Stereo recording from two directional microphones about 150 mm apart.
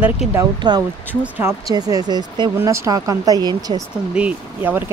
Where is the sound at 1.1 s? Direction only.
15° right (ahead or behind); by 2.5 s 30° right (ahead or behind).